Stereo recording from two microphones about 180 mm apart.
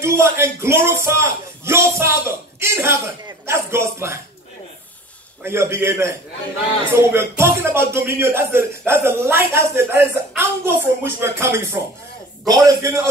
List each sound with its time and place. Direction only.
0.0 s a man's voice: 15° right (ahead or behind)
5.4 s a man's voice: 15° right (ahead or behind)